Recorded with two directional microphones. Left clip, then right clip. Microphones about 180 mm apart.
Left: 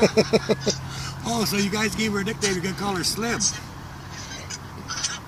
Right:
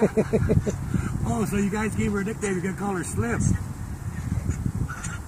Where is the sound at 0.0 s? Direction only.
15° left (ahead or behind).